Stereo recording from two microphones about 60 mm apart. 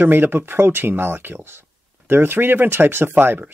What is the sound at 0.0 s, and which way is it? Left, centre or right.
Speech, right.